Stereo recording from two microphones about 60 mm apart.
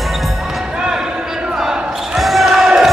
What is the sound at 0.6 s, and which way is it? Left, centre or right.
Basketball bounce, centre.